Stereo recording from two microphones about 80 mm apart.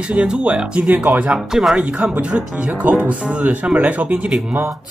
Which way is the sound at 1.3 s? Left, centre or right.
Centre.